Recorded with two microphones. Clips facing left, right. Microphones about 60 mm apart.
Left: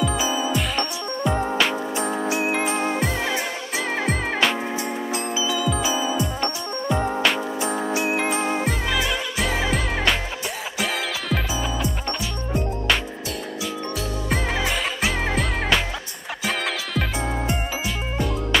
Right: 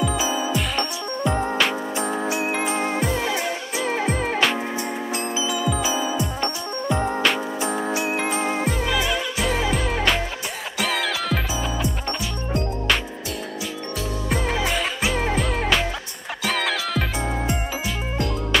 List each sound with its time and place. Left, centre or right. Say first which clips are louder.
0.0 s music: even; centre
5.1 s music: even; right
5.5 s music: even; centre
6.9 s music: even; centre
7.9 s music: left 1 dB; centre
8.2 s music: even; centre
12.5 s music: even; centre
14.3 s music: right 1 dB; centre